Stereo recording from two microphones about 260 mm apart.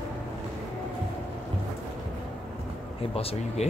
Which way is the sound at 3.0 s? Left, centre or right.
Left.